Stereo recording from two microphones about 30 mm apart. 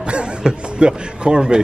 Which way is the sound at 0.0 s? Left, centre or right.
Right.